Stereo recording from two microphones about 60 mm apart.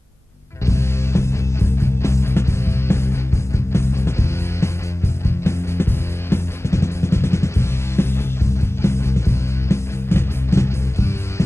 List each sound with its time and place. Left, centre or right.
0.7 s music: left